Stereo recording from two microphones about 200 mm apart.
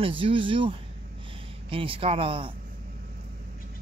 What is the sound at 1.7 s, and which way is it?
Speech, 25° right (ahead or behind).